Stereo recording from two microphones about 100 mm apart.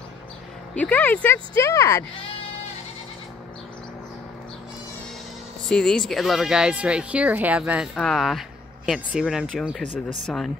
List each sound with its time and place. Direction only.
0.7 s speech: 20° left (ahead or behind)
5.7 s speech: 5° left (ahead or behind); by 7.9 s 10° right (ahead or behind)
7.9 s speech: 5° left (ahead or behind)